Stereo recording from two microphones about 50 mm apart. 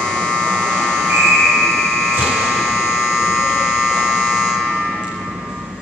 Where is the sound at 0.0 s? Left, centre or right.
Centre.